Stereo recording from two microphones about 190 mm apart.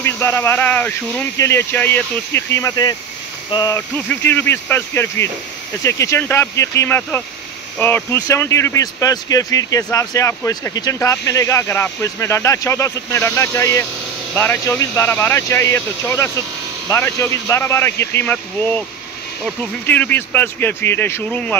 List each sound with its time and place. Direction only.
0.0 s speech: 10° left (ahead or behind)
19.9 s speech: 10° left (ahead or behind)